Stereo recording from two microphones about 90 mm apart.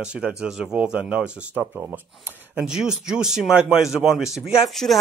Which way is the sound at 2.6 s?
10° right (ahead or behind).